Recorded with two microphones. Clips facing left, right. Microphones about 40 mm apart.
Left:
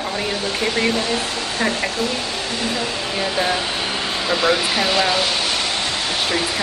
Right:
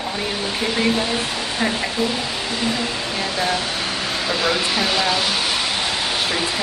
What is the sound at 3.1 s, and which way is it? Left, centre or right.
Speech, centre.